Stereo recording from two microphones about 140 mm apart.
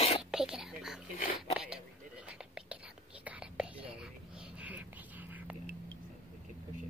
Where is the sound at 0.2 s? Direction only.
5° right (ahead or behind).